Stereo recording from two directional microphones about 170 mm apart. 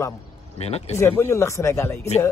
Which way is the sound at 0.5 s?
35° left (ahead or behind).